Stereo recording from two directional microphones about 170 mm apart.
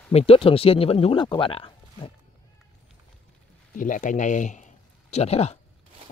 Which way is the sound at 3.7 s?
50° left (ahead or behind).